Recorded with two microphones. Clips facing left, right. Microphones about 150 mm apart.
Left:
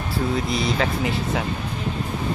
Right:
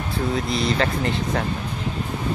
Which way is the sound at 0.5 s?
Centre (ahead or behind).